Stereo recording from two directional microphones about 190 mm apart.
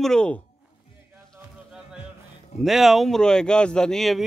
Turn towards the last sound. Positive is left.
turn(degrees=0)  # may be behind; listen again after turning